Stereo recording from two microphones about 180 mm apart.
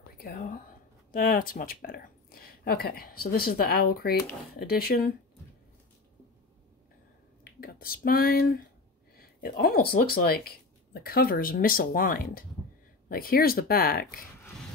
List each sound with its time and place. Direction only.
0.2 s speech: 55° left (ahead or behind)
7.6 s speech: 55° left (ahead or behind)